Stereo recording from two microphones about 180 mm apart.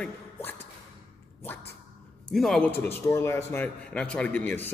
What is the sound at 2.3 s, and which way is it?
A man's voice, centre (ahead or behind).